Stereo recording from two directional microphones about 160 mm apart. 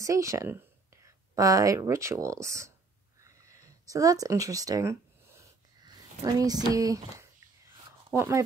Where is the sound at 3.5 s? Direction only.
20° right (ahead or behind).